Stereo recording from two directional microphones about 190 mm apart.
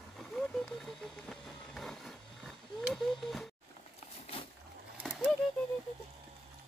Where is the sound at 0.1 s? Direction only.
Centre (ahead or behind).